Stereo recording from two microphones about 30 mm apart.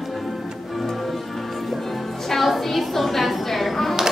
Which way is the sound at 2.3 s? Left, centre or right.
Centre.